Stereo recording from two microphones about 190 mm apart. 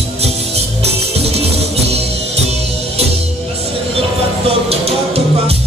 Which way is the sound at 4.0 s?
30° right (ahead or behind).